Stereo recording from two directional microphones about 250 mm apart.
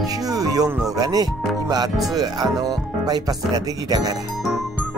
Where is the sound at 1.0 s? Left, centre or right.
Centre.